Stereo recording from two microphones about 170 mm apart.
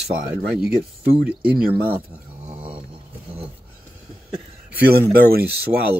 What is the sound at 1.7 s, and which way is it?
Speech, 10° right (ahead or behind).